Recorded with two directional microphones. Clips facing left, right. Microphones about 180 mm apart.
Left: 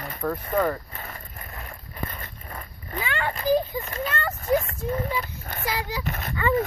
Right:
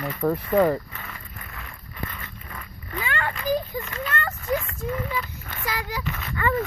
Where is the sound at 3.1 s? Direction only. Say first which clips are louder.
Even; 20° left (ahead or behind).